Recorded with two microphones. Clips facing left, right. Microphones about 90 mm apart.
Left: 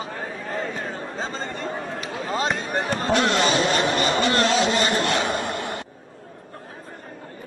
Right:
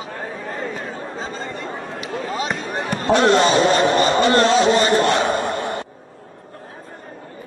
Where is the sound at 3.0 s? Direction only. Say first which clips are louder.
Right 7 dB; 35° right (ahead or behind).